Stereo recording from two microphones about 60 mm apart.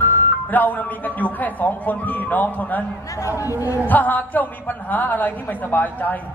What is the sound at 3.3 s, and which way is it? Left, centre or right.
Speech, left.